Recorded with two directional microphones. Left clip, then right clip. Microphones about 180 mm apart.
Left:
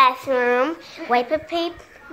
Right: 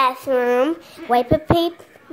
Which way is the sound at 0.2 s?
30° right (ahead or behind).